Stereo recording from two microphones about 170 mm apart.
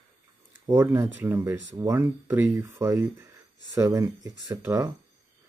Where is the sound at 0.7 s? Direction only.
15° right (ahead or behind).